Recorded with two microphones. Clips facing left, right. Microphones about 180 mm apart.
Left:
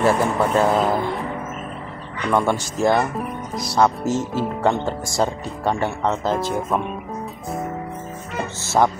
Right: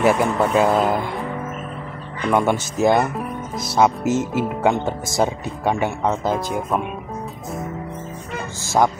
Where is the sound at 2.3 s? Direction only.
15° right (ahead or behind).